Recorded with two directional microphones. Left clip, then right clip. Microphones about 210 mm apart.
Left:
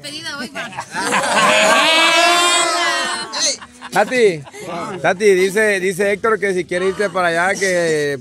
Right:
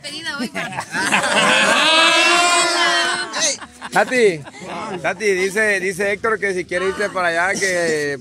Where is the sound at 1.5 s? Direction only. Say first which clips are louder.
Left 1 dB; 15° left (ahead or behind).